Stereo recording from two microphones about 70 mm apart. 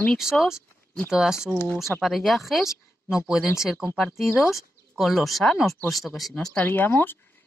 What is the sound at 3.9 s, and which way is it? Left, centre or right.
Speech, centre.